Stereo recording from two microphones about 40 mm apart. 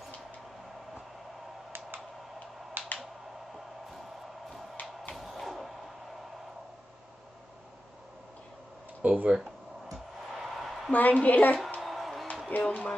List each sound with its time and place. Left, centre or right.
2.8 s finger snapping: right
5.1 s a sound: centre
9.0 s speech: right
9.3 s a sound: centre
10.9 s a woman's voice: left
11.8 s music: centre
12.4 s a woman's voice: left